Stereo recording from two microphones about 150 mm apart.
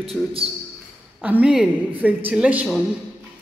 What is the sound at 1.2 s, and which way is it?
Speech, 10° right (ahead or behind).